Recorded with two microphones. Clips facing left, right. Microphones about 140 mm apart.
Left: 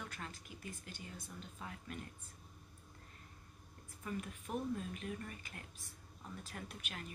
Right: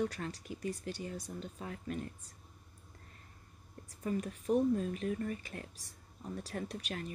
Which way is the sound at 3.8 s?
40° right (ahead or behind).